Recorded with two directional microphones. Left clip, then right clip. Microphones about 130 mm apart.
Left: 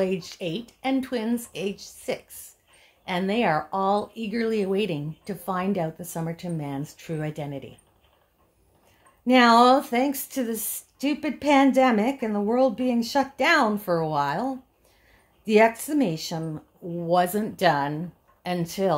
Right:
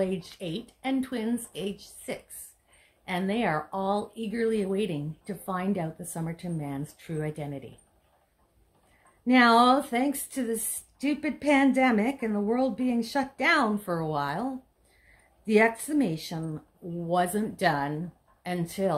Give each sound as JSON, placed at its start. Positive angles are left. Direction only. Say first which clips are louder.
{"t": 0.0, "sound": "speech", "louder": "left 4 dB", "side_deg": 40}
{"t": 9.2, "sound": "speech", "louder": "left 3 dB", "side_deg": 35}